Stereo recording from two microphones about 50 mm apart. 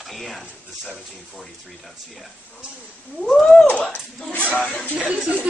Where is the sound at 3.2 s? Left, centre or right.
Centre.